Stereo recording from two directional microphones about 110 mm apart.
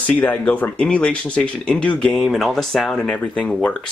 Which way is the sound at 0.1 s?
15° left (ahead or behind).